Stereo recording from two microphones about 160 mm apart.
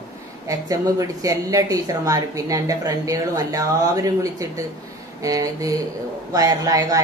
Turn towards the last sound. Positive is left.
turn(degrees=-20)  # may be behind; listen again after turning